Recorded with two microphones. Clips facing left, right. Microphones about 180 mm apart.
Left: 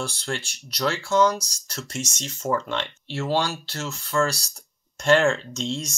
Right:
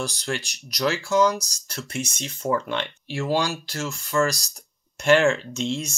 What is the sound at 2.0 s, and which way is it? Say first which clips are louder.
Speech: right 2 dB; 55° right (ahead or behind).